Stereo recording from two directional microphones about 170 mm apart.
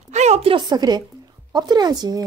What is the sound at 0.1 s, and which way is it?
A woman's voice, 40° right (ahead or behind).